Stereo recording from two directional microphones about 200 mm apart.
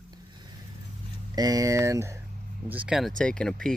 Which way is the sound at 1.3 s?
20° right (ahead or behind).